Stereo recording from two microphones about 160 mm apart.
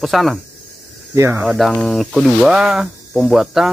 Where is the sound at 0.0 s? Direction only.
Centre (ahead or behind).